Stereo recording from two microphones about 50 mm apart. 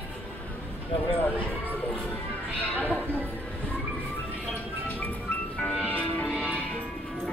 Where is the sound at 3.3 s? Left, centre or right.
Left.